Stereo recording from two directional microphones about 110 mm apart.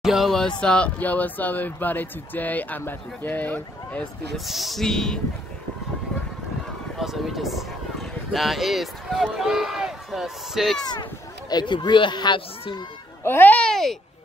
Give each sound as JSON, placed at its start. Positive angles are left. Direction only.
{"t": 0.0, "sound": "speech", "side_deg": 0}
{"t": 4.5, "sound": "speech", "side_deg": 0}
{"t": 7.0, "sound": "speech", "side_deg": 0}
{"t": 10.9, "sound": "speech", "side_deg": 40}
{"t": 13.2, "sound": "speech", "side_deg": 20}